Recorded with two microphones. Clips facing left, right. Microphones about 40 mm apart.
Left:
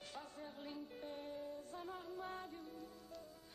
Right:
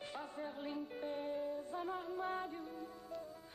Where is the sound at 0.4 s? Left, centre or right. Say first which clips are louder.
Right 8 dB; right.